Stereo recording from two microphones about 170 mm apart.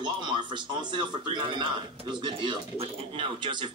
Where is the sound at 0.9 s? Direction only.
30° right (ahead or behind).